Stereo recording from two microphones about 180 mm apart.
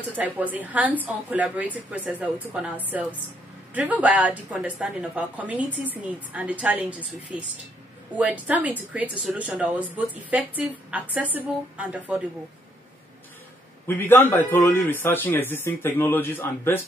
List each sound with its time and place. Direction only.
0.2 s a woman's voice: 10° right (ahead or behind)
13.8 s a man's voice: 10° left (ahead or behind)